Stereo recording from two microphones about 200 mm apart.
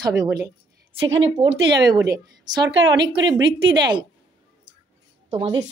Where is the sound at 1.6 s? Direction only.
60° right (ahead or behind).